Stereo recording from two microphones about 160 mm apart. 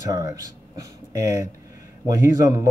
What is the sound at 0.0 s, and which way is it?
Speech, 20° right (ahead or behind).